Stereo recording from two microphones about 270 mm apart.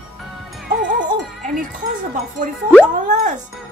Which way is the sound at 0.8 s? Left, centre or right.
Right.